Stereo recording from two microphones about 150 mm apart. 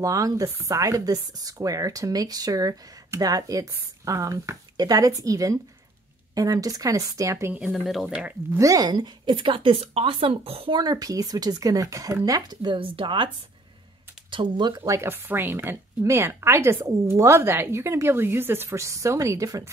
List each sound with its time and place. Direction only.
0.0 s speech: 25° right (ahead or behind)
7.5 s speech: centre (ahead or behind)
8.5 s a woman's voice: 25° right (ahead or behind); by 10.8 s 40° right (ahead or behind)
10.8 s speech: 25° right (ahead or behind)
14.3 s a woman's voice: 30° right (ahead or behind)
14.8 s speech: 15° right (ahead or behind)